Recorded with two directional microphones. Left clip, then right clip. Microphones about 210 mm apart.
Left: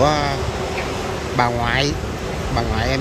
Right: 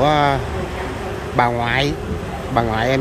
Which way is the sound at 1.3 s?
10° right (ahead or behind).